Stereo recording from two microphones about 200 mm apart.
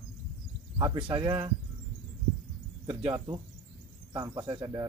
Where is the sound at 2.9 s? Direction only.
20° right (ahead or behind).